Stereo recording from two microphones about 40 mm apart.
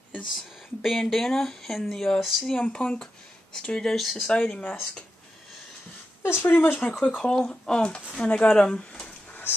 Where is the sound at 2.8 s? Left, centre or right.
Left.